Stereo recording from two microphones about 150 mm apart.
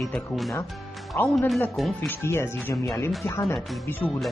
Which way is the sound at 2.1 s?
15° left (ahead or behind).